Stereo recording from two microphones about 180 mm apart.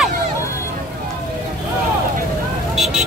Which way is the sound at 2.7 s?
Centre (ahead or behind).